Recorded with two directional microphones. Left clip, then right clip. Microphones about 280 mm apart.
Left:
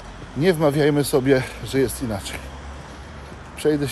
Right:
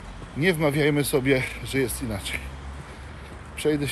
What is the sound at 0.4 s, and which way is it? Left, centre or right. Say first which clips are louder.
Speech: left 4 dB; centre.